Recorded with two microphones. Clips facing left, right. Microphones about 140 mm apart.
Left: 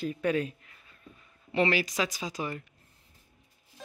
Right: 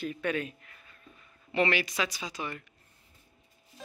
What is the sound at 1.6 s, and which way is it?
Speech, 35° left (ahead or behind).